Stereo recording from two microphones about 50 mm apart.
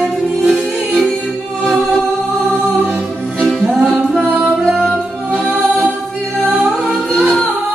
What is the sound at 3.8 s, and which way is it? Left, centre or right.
Music, centre.